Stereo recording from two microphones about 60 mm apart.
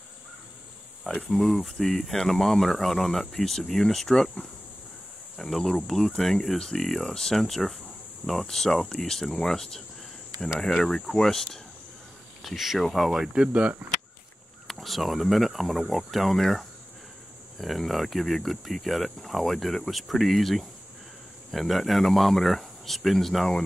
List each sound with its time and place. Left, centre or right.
1.3 s speech: centre
13.5 s speech: right
14.7 s speech: centre